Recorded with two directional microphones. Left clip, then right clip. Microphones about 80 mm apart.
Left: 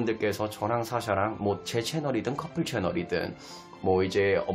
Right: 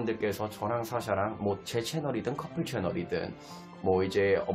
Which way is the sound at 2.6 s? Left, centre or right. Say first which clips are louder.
Left 4 dB; left.